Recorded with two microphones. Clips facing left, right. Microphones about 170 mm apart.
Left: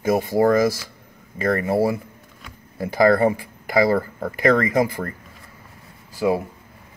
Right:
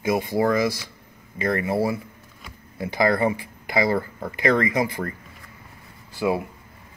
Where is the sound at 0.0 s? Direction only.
45° left (ahead or behind).